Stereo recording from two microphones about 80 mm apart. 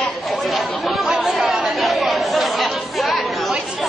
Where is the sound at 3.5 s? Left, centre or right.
Centre.